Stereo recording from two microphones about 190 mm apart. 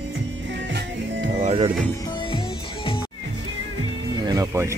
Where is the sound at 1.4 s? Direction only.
35° right (ahead or behind).